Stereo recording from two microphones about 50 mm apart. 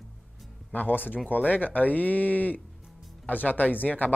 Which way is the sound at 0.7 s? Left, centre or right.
Left.